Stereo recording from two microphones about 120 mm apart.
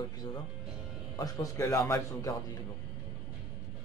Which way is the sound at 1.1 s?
30° left (ahead or behind).